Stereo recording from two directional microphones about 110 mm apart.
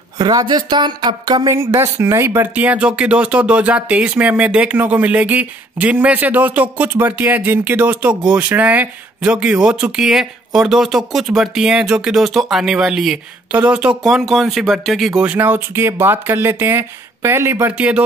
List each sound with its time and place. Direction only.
0.2 s speech: 40° right (ahead or behind)
1.5 s speech: 25° right (ahead or behind); by 15.2 s centre (ahead or behind)
15.2 s speech: 20° right (ahead or behind)